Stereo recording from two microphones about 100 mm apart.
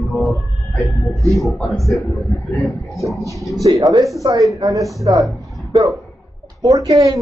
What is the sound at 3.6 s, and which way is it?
A man's voice, 35° right (ahead or behind).